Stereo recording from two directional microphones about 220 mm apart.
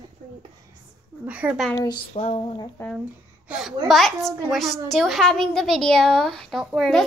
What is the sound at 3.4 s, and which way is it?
A woman's voice, centre (ahead or behind).